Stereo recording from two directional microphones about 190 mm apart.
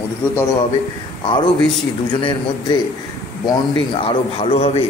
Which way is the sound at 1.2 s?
25° left (ahead or behind).